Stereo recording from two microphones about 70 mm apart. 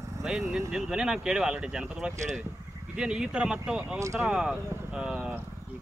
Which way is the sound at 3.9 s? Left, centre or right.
Right.